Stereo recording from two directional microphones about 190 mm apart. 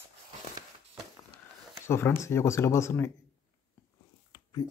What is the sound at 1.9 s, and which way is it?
Speech, 15° left (ahead or behind).